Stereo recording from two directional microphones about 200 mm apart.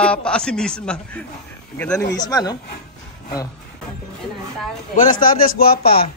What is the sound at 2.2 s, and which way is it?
Speech, 20° left (ahead or behind).